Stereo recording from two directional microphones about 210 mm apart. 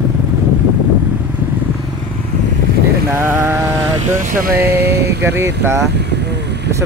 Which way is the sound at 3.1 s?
10° right (ahead or behind).